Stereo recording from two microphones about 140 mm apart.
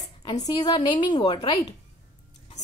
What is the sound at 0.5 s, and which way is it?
A woman's voice, 35° left (ahead or behind).